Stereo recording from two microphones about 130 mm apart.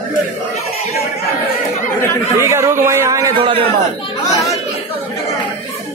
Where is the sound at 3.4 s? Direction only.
40° right (ahead or behind).